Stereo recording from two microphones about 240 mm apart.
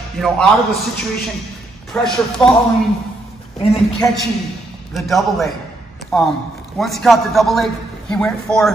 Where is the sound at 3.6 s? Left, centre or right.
Left.